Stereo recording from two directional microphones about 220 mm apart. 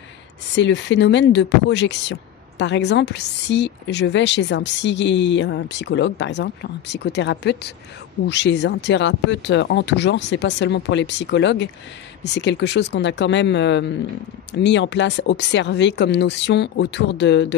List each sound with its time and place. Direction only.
0.6 s a woman's voice: 55° left (ahead or behind)